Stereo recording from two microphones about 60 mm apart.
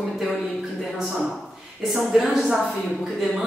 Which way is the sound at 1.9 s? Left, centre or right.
Centre.